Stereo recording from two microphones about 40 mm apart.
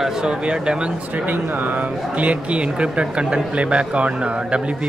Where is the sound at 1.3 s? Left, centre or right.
Right.